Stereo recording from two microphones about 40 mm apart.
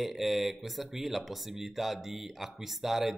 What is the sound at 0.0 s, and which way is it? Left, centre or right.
Speech, centre.